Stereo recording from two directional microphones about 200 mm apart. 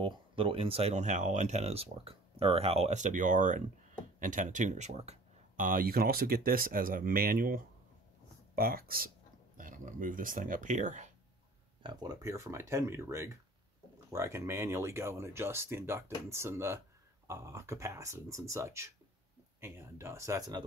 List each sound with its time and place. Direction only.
0.0 s speech: 25° right (ahead or behind)
11.8 s speech: 20° right (ahead or behind)